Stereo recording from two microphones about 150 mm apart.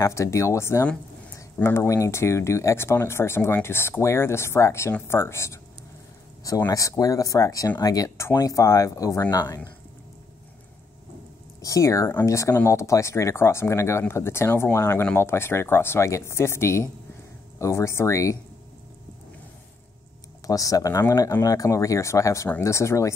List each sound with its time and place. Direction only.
0.0 s speech: 20° left (ahead or behind)
11.6 s speech: 20° left (ahead or behind)
20.4 s speech: 25° left (ahead or behind)